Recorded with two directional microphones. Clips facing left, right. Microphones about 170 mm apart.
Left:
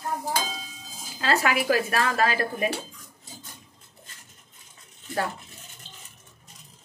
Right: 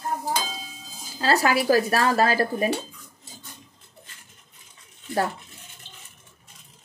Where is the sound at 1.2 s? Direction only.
35° right (ahead or behind).